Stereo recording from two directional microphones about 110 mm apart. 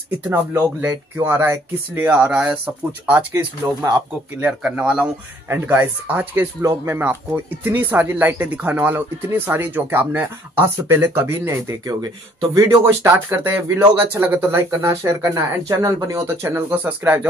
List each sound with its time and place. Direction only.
0.3 s speech: 20° right (ahead or behind)
12.8 s speech: 20° right (ahead or behind)